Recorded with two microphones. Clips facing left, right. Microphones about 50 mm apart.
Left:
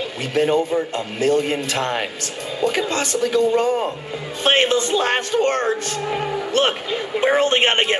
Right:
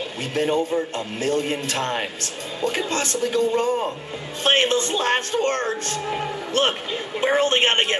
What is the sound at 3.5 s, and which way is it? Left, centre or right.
Speech, left.